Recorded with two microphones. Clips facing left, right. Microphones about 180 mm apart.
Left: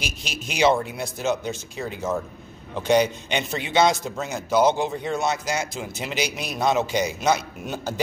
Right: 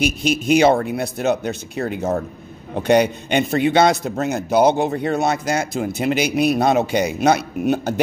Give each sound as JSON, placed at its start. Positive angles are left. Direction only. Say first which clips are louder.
{"t": 0.0, "sound": "speech", "louder": "right 14 dB", "side_deg": -55}